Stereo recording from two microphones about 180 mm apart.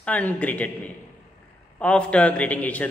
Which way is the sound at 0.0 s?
10° left (ahead or behind).